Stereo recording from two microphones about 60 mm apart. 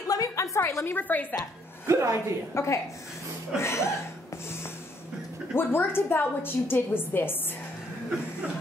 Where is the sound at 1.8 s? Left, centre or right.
Right.